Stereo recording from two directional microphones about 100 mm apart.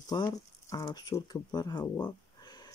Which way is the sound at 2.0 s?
45° left (ahead or behind).